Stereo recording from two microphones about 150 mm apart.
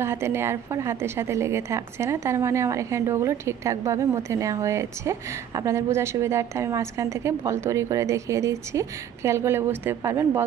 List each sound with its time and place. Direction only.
0.0 s a woman's voice: 15° right (ahead or behind)